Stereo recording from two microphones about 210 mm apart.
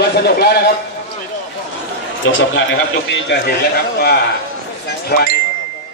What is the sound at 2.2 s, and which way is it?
A man's voice, 65° left (ahead or behind).